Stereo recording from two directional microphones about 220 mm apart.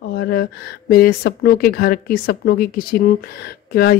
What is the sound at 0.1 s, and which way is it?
Speech, 45° left (ahead or behind).